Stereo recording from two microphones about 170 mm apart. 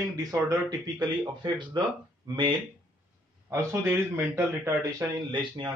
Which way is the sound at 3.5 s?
15° right (ahead or behind).